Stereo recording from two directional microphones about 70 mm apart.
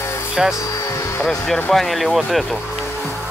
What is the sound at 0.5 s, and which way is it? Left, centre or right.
Music, left.